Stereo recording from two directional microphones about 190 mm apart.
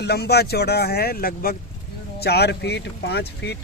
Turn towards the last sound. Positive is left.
turn(degrees=60)  # may be behind; listen again after turning